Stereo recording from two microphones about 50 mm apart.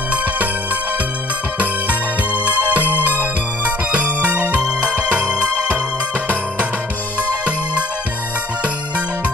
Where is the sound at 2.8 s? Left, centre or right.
Left.